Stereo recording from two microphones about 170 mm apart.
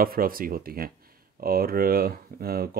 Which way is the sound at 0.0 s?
60° right (ahead or behind).